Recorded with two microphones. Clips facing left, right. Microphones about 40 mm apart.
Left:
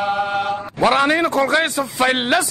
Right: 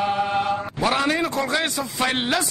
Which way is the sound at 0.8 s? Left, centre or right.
Left.